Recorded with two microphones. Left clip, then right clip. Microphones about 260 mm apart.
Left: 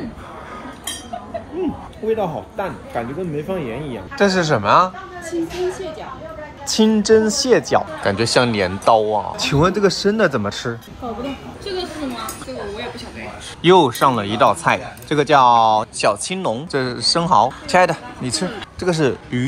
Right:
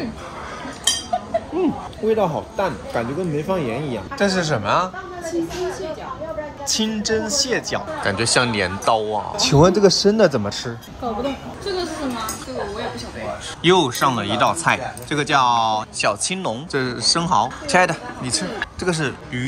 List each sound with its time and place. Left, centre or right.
1.6 s speech: centre
6.7 s speech: centre
13.6 s speech: centre